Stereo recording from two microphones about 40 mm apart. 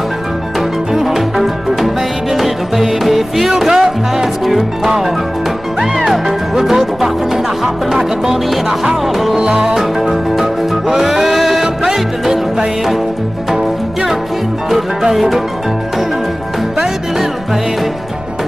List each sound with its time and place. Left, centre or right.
0.6 s music: centre
9.4 s music: centre
9.8 s music: centre
14.7 s music: centre
16.7 s music: centre